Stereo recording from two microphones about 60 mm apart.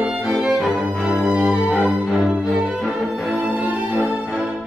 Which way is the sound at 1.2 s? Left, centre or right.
Centre.